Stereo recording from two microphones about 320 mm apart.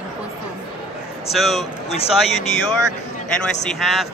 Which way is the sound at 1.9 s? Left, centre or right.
Centre.